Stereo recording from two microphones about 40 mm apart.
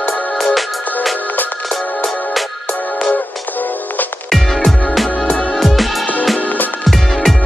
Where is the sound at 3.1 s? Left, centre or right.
Left.